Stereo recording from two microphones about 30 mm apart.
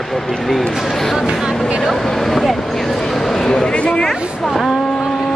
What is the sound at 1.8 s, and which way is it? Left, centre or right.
Speech, centre.